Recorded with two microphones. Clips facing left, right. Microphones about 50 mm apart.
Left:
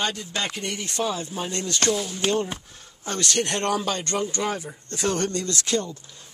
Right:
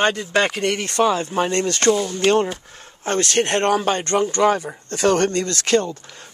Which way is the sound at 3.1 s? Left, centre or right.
Right.